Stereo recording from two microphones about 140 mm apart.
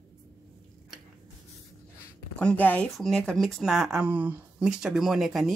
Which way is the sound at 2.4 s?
10° left (ahead or behind).